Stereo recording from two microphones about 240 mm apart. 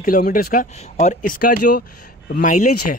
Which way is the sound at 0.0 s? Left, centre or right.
Left.